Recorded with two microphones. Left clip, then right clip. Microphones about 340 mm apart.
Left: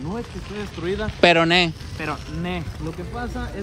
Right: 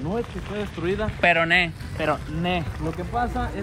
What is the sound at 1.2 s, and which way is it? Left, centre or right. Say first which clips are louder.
Speech: left 3 dB; centre.